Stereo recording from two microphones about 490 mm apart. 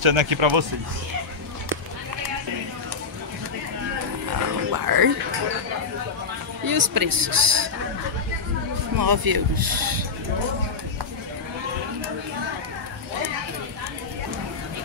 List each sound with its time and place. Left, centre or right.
0.0 s speech: right
4.3 s music: right
6.6 s speech: right
8.9 s speech: right